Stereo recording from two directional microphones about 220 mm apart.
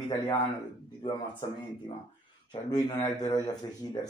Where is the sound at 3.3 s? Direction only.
15° left (ahead or behind).